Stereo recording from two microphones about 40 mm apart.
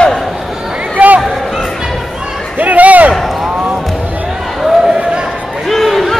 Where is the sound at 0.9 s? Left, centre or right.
Right.